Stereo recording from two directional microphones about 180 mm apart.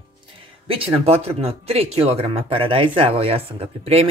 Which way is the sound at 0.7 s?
30° right (ahead or behind).